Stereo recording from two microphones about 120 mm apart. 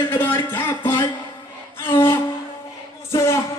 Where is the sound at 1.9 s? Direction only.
20° left (ahead or behind).